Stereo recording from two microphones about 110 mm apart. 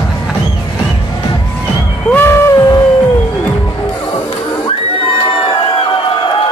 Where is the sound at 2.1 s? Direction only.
20° left (ahead or behind).